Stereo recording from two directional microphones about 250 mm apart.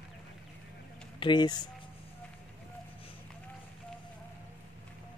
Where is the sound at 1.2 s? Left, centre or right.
Centre.